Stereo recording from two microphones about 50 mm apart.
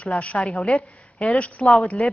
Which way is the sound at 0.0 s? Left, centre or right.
Left.